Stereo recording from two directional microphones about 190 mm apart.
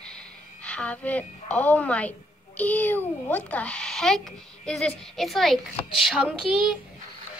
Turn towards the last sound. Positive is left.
turn(degrees=0)  # may be behind; listen again after turning